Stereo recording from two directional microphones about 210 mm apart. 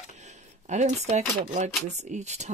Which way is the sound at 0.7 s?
35° right (ahead or behind).